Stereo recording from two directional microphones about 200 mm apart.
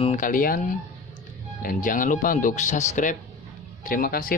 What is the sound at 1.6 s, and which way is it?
Speech, 40° left (ahead or behind).